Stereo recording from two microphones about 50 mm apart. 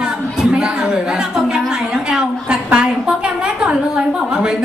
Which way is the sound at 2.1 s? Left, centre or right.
Centre.